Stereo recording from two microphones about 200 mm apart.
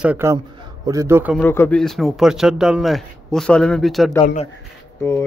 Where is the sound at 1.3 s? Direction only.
10° left (ahead or behind).